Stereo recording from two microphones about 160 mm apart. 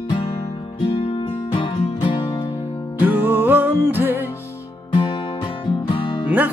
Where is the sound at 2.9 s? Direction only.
10° right (ahead or behind).